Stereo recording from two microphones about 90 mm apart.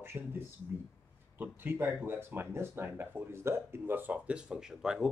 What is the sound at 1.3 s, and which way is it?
Speech, 25° right (ahead or behind).